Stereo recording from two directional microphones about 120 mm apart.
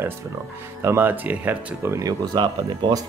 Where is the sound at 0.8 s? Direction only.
15° right (ahead or behind).